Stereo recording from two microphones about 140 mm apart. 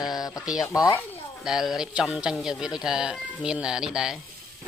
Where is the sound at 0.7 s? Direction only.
20° left (ahead or behind).